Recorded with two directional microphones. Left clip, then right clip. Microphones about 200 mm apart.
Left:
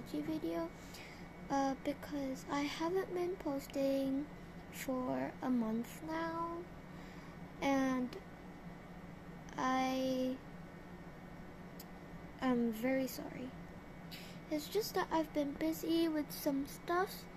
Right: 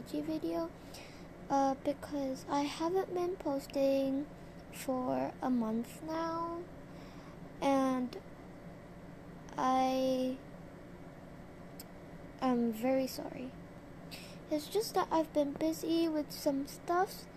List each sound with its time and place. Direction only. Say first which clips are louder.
0.1 s a child's voice: right 3 dB; 25° right (ahead or behind)
7.6 s a child's voice: right 4 dB; 25° right (ahead or behind)
9.6 s a child's voice: right 5 dB; 25° right (ahead or behind)
12.4 s a child's voice: right 3 dB; 25° right (ahead or behind)
14.5 s a child's voice: right 4 dB; 25° right (ahead or behind)